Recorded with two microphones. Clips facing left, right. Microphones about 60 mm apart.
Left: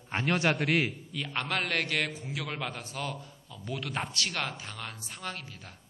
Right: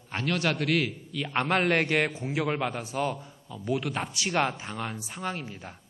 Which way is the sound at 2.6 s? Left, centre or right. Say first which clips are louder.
Right 7 dB; centre.